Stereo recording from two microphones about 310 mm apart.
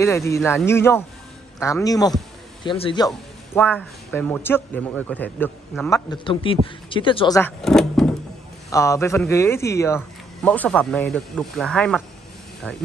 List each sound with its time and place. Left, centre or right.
0.0 s a man's voice: centre